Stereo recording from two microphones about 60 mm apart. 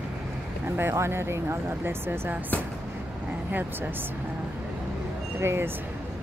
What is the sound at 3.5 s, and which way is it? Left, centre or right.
Speech, right.